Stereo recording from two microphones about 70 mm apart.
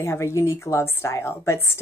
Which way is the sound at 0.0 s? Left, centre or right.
Left.